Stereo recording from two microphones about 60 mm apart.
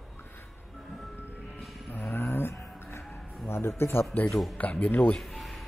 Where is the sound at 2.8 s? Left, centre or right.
Left.